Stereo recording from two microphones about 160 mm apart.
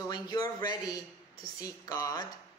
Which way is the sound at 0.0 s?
25° left (ahead or behind).